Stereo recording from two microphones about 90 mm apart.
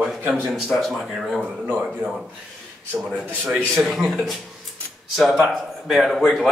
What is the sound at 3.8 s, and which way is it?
Speech, centre (ahead or behind).